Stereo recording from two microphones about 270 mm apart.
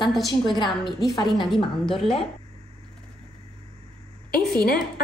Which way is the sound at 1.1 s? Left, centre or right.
Centre.